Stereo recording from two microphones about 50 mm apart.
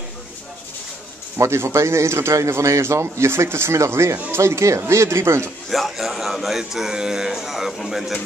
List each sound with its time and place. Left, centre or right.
1.4 s a man's voice: right
5.7 s speech: centre